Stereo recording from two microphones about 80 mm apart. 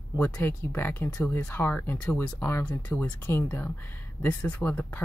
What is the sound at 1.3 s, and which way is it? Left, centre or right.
Speech, left.